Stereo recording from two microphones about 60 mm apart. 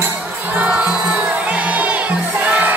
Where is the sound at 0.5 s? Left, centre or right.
Right.